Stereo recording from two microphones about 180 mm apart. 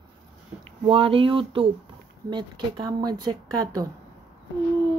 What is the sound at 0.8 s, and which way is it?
Speech, 30° right (ahead or behind).